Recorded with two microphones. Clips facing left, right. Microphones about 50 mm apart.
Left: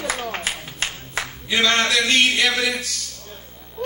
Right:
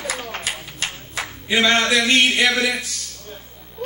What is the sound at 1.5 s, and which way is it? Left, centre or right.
Speech, right.